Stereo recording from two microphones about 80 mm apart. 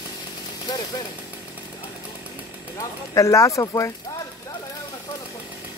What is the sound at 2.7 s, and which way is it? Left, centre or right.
Speech, left.